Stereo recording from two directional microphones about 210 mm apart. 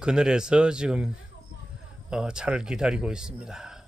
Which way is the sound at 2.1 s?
5° right (ahead or behind).